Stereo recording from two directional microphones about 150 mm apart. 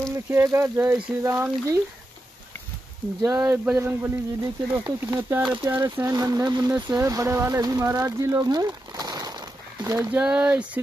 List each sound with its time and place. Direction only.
0.3 s speech: 15° right (ahead or behind)
3.2 s speech: 25° right (ahead or behind)
3.5 s speech: 10° right (ahead or behind)
5.8 s speech: 20° right (ahead or behind)
10.1 s speech: 10° right (ahead or behind)